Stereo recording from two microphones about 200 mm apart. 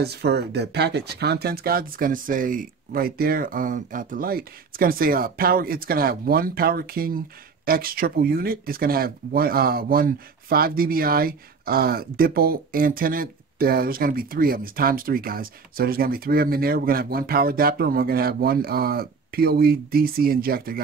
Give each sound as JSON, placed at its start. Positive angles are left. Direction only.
{"t": 0.0, "sound": "speech", "side_deg": -55}